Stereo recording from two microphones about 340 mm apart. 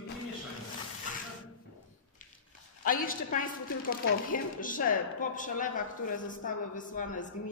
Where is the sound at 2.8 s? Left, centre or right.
Left.